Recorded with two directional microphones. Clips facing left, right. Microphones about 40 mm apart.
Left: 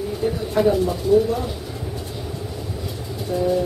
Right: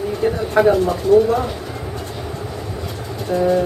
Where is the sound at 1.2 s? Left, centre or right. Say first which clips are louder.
Right 5 dB; right.